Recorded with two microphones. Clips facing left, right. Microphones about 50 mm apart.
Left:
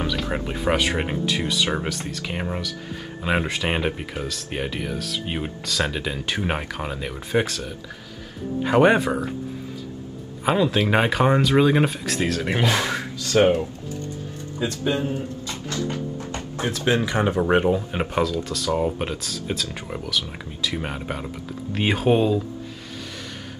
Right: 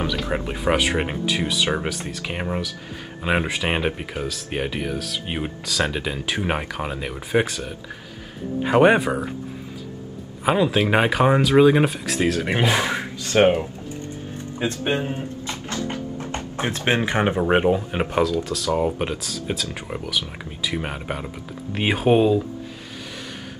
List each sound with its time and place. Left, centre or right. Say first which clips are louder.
0.0 s speech: right 1 dB; centre
8.6 s speech: right 1 dB; centre
10.4 s speech: right 1 dB; centre
13.2 s speech: right 1 dB; right
14.6 s music: even; right
17.5 s speech: right 1 dB; right